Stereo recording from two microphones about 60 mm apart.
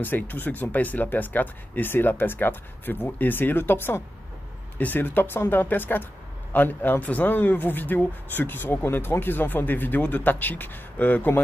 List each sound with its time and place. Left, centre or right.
0.0 s speech: left